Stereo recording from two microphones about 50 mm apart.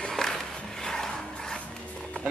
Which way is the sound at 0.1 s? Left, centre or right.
Centre.